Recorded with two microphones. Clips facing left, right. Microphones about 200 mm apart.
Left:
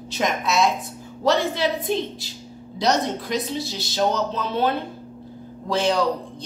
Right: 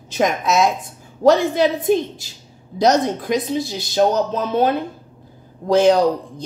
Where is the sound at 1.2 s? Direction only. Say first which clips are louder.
Right 6 dB; 45° right (ahead or behind).